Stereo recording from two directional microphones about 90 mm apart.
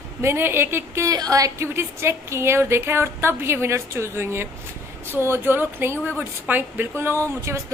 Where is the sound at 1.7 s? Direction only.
30° right (ahead or behind).